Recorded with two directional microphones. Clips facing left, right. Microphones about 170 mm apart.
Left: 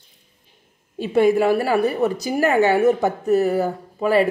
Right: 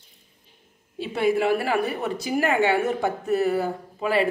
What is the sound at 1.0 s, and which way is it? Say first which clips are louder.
A woman's voice: left 6 dB; 45° left (ahead or behind).